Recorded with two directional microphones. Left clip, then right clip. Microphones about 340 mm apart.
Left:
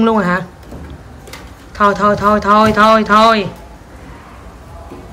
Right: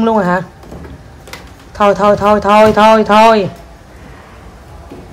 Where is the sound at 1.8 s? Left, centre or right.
Centre.